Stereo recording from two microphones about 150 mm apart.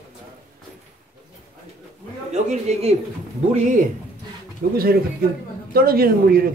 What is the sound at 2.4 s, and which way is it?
Speech, 50° right (ahead or behind).